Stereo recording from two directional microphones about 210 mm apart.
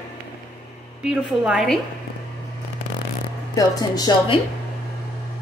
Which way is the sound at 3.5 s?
20° left (ahead or behind).